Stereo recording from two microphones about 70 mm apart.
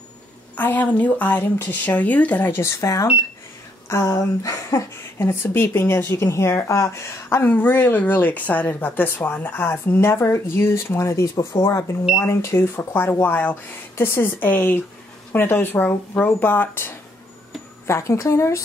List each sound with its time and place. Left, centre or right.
0.6 s speech: left
2.7 s speech: left
5.3 s speech: left
17.8 s speech: left